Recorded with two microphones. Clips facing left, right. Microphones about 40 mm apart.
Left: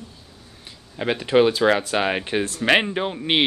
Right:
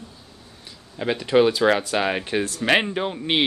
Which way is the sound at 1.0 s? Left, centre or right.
Centre.